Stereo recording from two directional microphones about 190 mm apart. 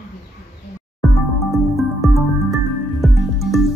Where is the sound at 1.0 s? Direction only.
Centre (ahead or behind).